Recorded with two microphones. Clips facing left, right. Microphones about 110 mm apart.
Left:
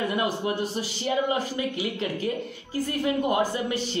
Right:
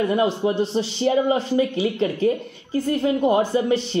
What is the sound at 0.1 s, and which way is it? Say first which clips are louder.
A man's voice: right 6 dB; 30° right (ahead or behind).